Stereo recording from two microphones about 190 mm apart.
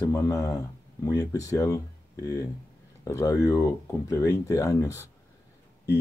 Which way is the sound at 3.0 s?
15° left (ahead or behind).